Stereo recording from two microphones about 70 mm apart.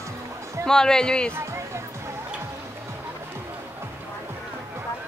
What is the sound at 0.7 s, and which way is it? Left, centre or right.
Speech, centre.